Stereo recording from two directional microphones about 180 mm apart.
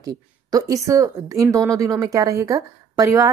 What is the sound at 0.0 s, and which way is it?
Speech, 20° right (ahead or behind).